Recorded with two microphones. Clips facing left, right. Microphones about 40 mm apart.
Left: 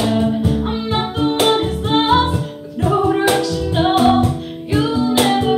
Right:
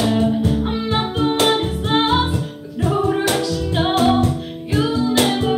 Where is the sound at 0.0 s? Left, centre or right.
Centre.